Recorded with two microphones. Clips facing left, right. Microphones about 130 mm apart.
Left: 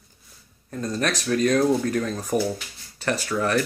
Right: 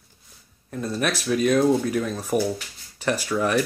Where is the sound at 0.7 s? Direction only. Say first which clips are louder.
Even; 5° right (ahead or behind).